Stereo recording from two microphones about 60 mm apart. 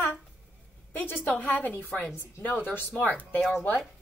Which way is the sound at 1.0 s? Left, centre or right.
Left.